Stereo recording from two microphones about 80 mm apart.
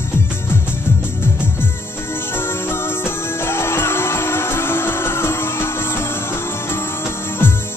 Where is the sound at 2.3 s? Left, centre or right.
Left.